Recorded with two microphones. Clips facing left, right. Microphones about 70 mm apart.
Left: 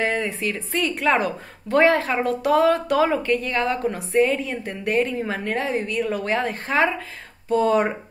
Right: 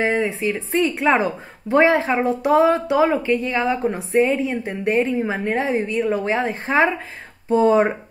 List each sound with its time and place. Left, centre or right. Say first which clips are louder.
0.0 s speech: right 3 dB; centre